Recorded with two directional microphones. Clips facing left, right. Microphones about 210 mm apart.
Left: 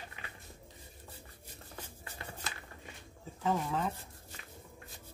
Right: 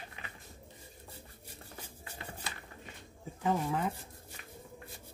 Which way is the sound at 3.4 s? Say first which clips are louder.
Right 1 dB; 15° right (ahead or behind).